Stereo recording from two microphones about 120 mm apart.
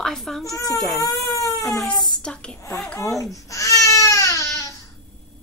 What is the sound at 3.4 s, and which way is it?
Babbling, 25° left (ahead or behind).